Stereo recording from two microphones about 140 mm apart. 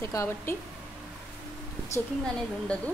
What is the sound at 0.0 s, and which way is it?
Speech, 20° left (ahead or behind).